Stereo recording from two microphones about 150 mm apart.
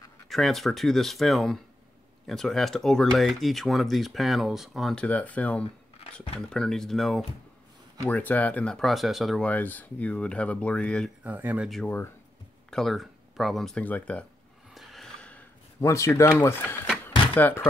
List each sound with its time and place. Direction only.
0.3 s speech: centre (ahead or behind)
11.2 s speech: 10° right (ahead or behind)
11.7 s speech: 10° left (ahead or behind)
14.7 s a sound: centre (ahead or behind)
15.8 s speech: 20° left (ahead or behind)